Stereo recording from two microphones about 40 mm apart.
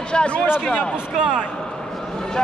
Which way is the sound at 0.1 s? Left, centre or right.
Left.